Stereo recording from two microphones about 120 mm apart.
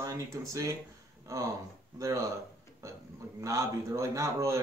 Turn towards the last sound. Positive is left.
turn(degrees=-25)  # may be behind; listen again after turning